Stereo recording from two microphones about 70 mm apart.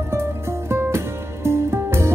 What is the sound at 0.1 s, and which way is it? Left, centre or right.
Music, right.